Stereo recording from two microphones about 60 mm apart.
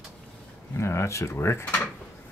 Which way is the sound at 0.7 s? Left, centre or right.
Left.